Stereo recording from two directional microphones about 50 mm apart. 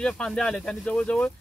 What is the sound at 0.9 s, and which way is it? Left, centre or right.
Speech, left.